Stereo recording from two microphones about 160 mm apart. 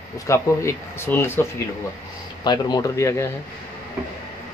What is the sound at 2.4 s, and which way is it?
Speech, 25° left (ahead or behind).